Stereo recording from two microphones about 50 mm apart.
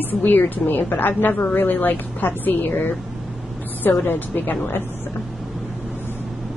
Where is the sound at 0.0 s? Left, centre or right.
Left.